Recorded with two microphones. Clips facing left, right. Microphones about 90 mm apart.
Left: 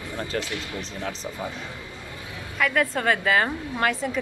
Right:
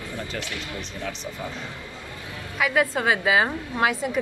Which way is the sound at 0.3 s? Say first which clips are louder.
Left 6 dB; 40° left (ahead or behind).